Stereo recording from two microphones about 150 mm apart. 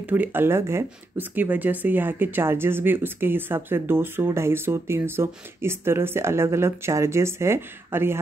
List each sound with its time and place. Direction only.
0.1 s speech: 15° right (ahead or behind)